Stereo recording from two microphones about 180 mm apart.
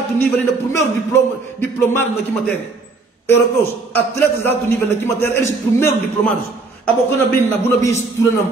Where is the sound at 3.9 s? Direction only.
10° left (ahead or behind).